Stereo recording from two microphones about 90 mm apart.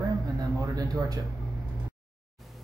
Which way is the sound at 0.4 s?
45° right (ahead or behind).